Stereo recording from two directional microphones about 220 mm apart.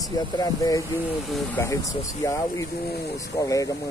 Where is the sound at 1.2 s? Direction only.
Centre (ahead or behind).